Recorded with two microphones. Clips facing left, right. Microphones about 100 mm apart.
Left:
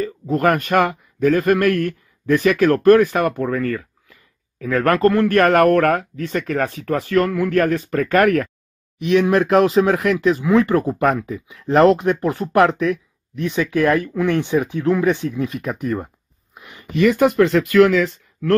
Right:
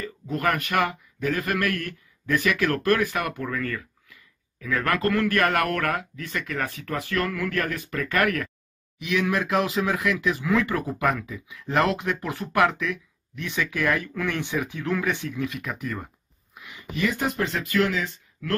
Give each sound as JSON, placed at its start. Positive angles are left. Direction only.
{"t": 0.4, "sound": "speech", "side_deg": 45}
{"t": 5.3, "sound": "speech", "side_deg": 45}
{"t": 7.6, "sound": "speech", "side_deg": 40}
{"t": 10.4, "sound": "speech", "side_deg": 30}
{"t": 16.6, "sound": "a sound", "side_deg": 45}
{"t": 17.0, "sound": "speech", "side_deg": 70}